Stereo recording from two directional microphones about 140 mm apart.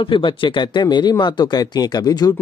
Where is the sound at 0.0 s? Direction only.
35° left (ahead or behind).